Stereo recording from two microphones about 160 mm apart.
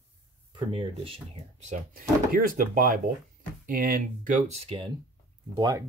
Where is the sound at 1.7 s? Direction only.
65° right (ahead or behind).